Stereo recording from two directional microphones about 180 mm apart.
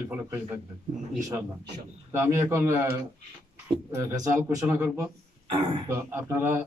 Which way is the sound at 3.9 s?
15° right (ahead or behind).